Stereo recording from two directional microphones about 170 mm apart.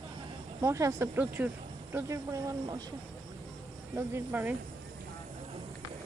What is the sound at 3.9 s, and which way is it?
Speech, 10° right (ahead or behind).